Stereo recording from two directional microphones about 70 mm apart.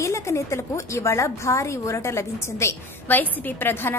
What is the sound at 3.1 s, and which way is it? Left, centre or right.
Speech, left.